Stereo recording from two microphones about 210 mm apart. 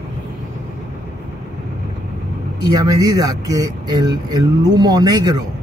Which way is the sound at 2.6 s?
20° right (ahead or behind).